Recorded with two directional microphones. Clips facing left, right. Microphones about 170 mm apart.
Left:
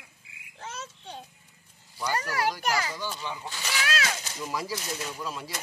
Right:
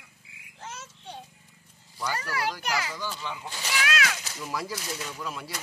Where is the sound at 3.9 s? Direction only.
30° left (ahead or behind).